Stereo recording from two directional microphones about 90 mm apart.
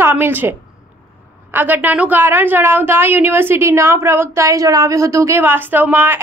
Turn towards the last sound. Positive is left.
turn(degrees=-25)  # may be behind; listen again after turning